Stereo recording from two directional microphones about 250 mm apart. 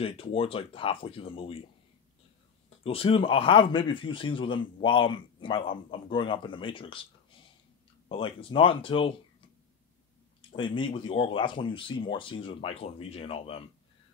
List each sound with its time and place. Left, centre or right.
0.0 s a man's voice: left
2.8 s a man's voice: left
10.5 s a man's voice: centre